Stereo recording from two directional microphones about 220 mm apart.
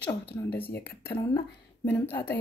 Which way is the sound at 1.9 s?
5° left (ahead or behind).